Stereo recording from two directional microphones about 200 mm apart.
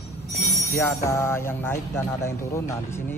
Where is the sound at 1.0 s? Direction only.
15° left (ahead or behind).